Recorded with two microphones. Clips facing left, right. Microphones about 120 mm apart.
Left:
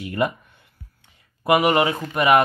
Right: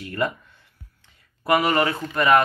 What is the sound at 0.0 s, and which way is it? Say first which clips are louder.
Speech: left 3 dB; 20° left (ahead or behind).